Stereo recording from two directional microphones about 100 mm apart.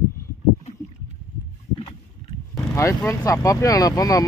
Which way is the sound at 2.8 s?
30° left (ahead or behind).